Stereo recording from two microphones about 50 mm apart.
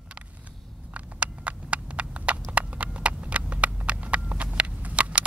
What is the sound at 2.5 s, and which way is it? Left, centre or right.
Clip-clop, right.